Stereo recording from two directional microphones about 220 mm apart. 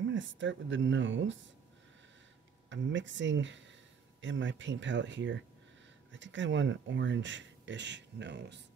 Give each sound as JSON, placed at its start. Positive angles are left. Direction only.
{"t": 0.1, "sound": "speech", "side_deg": -55}
{"t": 2.7, "sound": "speech", "side_deg": -55}